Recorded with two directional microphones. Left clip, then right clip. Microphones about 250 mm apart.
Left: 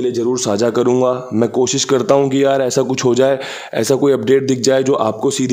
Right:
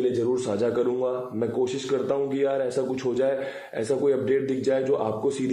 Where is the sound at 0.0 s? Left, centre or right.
Left.